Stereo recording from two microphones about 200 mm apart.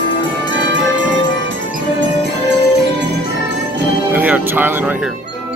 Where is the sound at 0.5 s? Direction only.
65° right (ahead or behind).